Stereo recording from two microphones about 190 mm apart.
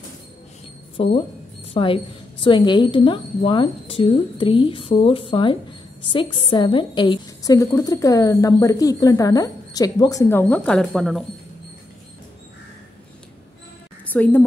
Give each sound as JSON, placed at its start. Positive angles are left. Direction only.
{"t": 1.0, "sound": "a woman's voice", "side_deg": 30}
{"t": 10.5, "sound": "speech", "side_deg": 5}
{"t": 14.1, "sound": "a woman's voice", "side_deg": 10}